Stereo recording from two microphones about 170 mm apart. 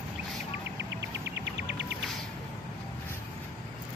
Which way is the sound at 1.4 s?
85° right.